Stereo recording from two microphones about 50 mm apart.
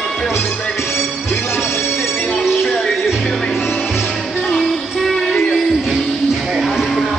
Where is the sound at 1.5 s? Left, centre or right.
Left.